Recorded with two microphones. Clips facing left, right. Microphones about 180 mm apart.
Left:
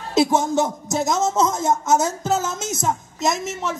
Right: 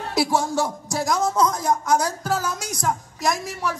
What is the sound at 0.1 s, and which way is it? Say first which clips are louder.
A man's voice: left 4 dB; 20° left (ahead or behind).